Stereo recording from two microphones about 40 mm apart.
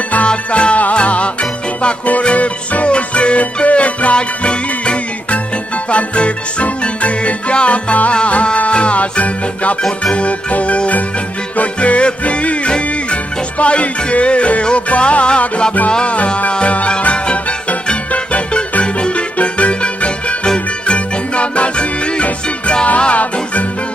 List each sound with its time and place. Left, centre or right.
0.3 s music: left